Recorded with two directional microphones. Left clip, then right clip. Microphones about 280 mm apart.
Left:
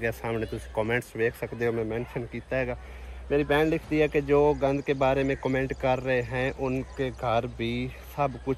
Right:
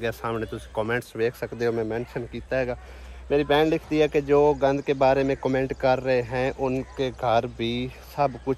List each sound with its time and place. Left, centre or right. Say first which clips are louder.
0.0 s speech: right 2 dB; centre